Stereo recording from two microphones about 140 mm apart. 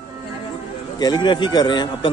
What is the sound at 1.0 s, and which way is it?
Speech, 30° left (ahead or behind).